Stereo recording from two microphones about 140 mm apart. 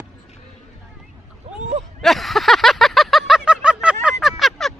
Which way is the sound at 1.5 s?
50° right (ahead or behind).